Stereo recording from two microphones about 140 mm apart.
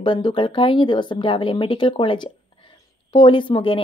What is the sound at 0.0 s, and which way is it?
Speech, 35° left (ahead or behind).